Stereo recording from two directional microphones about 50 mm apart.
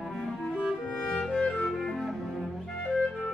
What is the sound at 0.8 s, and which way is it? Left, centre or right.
Music, left.